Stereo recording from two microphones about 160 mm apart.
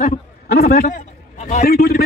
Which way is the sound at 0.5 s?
75° left (ahead or behind).